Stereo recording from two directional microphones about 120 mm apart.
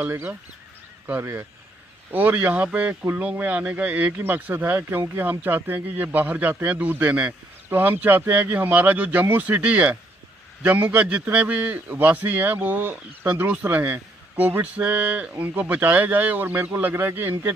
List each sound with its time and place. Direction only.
0.0 s a man's voice: 15° right (ahead or behind)